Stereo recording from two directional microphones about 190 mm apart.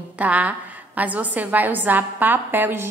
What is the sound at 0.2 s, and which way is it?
A woman's voice, 10° right (ahead or behind).